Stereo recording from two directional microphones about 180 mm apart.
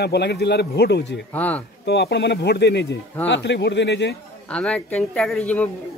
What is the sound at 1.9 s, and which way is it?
A man's voice, 65° left (ahead or behind).